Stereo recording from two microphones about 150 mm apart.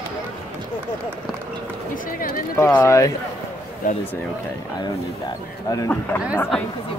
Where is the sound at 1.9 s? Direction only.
65° left (ahead or behind).